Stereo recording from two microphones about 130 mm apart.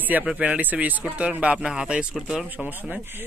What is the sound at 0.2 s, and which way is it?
Speech, 5° right (ahead or behind).